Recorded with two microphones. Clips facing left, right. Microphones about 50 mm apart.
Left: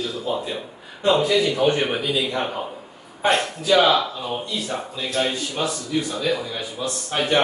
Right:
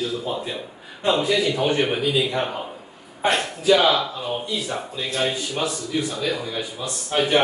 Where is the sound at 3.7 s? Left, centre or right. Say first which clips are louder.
Left 1 dB; centre.